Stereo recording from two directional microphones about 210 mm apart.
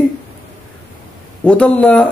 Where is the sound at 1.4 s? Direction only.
5° left (ahead or behind).